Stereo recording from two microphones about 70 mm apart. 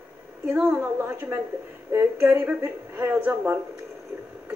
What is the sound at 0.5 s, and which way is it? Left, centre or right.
Speech, right.